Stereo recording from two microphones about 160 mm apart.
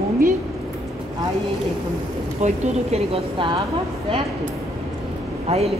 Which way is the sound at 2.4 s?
45° right (ahead or behind).